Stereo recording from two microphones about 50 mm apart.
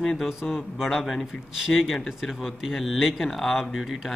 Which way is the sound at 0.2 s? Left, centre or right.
Centre.